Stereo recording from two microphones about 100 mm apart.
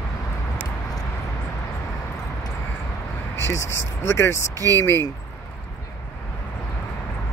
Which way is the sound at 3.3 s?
25° left (ahead or behind).